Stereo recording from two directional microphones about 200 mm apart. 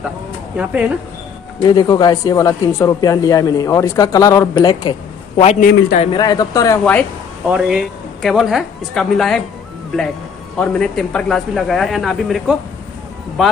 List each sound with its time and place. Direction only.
0.6 s a man's voice: 5° right (ahead or behind)
1.6 s speech: 20° left (ahead or behind)
5.4 s a man's voice: 35° left (ahead or behind)
6.1 s speech: 20° left (ahead or behind)
6.8 s a man's voice: 5° left (ahead or behind)
10.6 s a man's voice: 5° left (ahead or behind)